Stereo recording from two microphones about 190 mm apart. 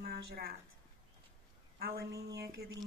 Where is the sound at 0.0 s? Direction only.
55° right (ahead or behind).